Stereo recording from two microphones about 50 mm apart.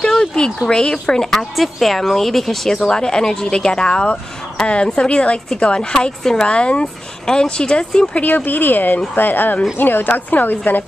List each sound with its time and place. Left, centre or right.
0.0 s a woman's voice: centre
8.1 s speech: left